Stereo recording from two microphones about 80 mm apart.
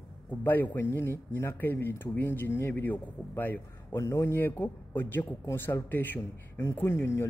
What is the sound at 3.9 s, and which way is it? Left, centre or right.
Speech, left.